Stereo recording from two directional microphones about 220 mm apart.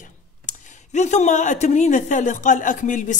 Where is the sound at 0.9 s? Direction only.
30° left (ahead or behind).